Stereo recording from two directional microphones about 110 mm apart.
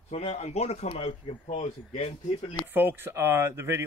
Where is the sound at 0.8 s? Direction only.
60° left (ahead or behind).